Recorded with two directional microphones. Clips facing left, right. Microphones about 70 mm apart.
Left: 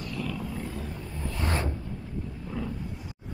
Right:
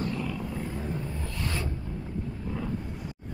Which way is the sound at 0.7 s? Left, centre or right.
Right.